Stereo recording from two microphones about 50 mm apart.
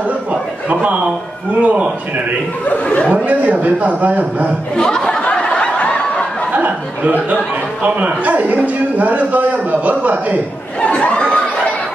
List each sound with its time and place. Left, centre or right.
1.6 s a man's voice: right
2.6 s speech: left
3.3 s a man's voice: right
4.7 s speech: centre
5.2 s a sound: centre
6.5 s a man's voice: right
10.8 s a sound: left